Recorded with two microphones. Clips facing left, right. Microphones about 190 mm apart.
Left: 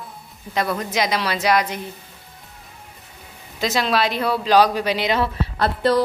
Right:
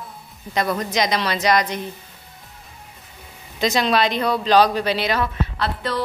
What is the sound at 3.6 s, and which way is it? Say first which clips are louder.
A woman's voice: right 2 dB; 5° left (ahead or behind).